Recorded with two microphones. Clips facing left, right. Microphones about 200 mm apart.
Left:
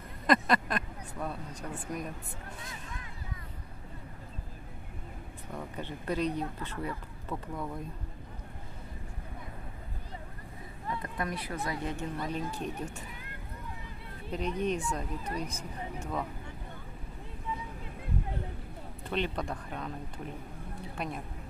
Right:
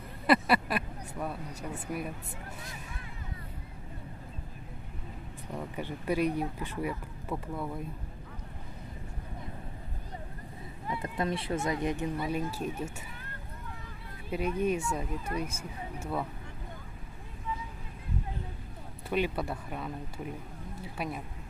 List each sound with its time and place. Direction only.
0.3 s speech: 10° right (ahead or behind)
5.5 s speech: 10° right (ahead or behind)
11.0 s speech: 25° right (ahead or behind); by 12.7 s 5° right (ahead or behind)
14.3 s speech: 5° right (ahead or behind)
19.0 s speech: 10° right (ahead or behind)
20.9 s speech: 5° right (ahead or behind)